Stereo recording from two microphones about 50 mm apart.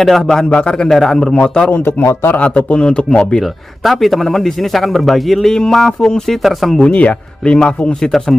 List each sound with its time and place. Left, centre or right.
0.0 s a man's voice: centre
0.5 s speech: left
0.9 s a man's voice: centre
1.2 s a man's voice: centre
1.7 s a man's voice: left
2.3 s speech: left
3.8 s a man's voice: centre
5.9 s a man's voice: centre
6.9 s speech: left; by 8.4 s centre